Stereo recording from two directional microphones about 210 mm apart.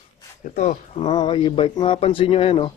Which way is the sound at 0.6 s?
30° left (ahead or behind).